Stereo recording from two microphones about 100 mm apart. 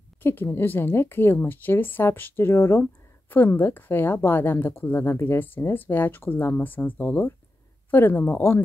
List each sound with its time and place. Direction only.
0.2 s a woman's voice: 20° left (ahead or behind)